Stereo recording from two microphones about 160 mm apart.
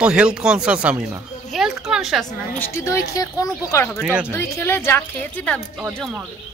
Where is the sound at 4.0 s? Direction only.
5° right (ahead or behind).